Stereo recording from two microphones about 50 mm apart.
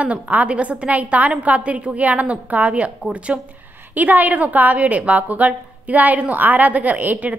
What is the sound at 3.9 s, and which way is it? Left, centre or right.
A woman's voice, right.